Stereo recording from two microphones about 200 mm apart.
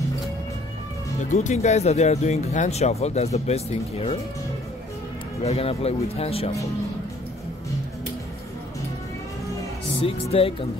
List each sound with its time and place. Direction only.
1.3 s speech: 35° left (ahead or behind)
5.4 s speech: 30° left (ahead or behind)
10.3 s speech: 30° left (ahead or behind)